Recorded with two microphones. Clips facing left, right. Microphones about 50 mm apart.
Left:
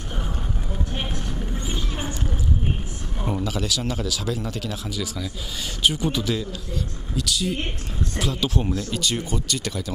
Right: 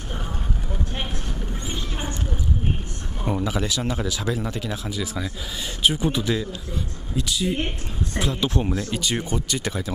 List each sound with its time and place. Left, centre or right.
1.7 s vehicle: centre
3.3 s speech: centre
5.8 s speech: centre
7.2 s speech: centre